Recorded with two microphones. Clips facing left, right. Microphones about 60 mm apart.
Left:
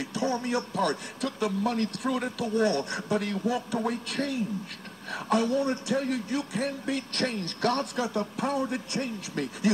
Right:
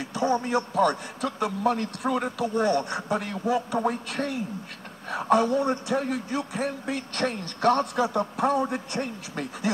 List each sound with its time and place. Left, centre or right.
0.1 s a man's voice: right